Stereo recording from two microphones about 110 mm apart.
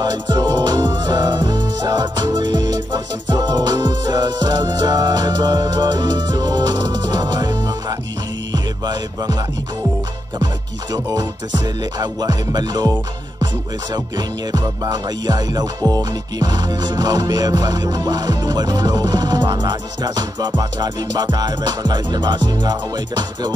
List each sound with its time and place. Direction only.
0.0 s music: 40° right (ahead or behind)
10.4 s music: 35° right (ahead or behind)
13.9 s music: 35° right (ahead or behind)